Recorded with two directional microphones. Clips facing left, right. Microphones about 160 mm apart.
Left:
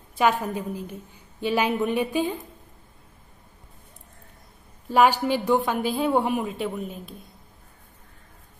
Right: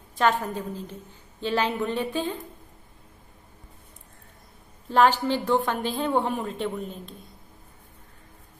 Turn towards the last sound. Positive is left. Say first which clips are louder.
# even
turn(degrees=5)  # may be behind; listen again after turning